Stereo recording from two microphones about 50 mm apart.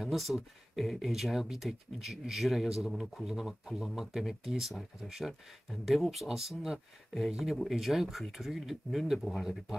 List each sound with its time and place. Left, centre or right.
0.0 s speech: centre
3.3 s speech: centre
7.5 s speech: centre